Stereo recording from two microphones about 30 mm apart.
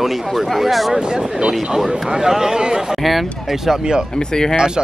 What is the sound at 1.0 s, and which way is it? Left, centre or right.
Speech, right.